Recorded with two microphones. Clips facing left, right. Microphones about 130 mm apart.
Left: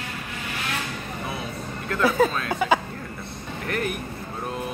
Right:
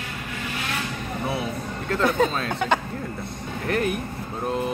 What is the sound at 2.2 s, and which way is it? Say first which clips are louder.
Speech: left 2 dB; 5° left (ahead or behind).